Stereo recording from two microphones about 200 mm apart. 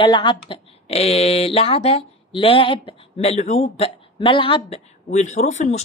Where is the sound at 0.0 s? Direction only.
20° left (ahead or behind).